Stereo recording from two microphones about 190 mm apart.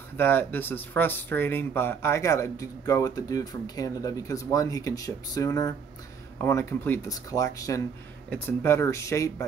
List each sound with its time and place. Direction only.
0.2 s speech: 10° left (ahead or behind)